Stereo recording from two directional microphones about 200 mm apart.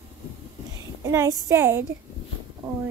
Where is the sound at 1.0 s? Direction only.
15° right (ahead or behind).